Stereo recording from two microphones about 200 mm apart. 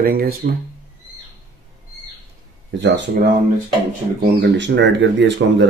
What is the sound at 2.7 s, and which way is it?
Speech, 65° right (ahead or behind).